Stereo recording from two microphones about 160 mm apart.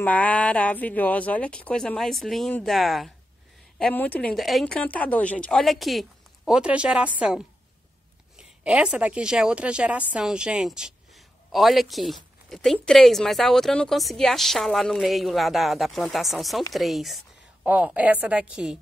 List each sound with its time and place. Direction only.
0.0 s a woman's voice: 10° left (ahead or behind)